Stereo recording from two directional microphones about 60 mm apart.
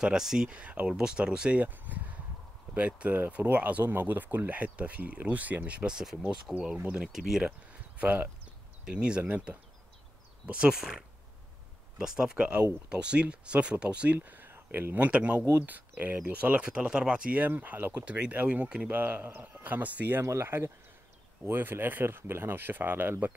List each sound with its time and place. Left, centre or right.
0.0 s speech: centre
0.5 s speech: right
1.7 s a sound: right
2.7 s speech: right
6.5 s speech: centre
8.0 s speech: right
8.8 s speech: centre
14.1 s speech: right
14.5 s a sound: right
15.0 s speech: right
17.4 s speech: right
18.9 s speech: right
20.2 s speech: right